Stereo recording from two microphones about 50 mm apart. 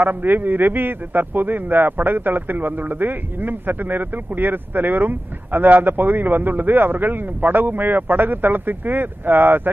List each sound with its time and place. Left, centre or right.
0.0 s a man's voice: right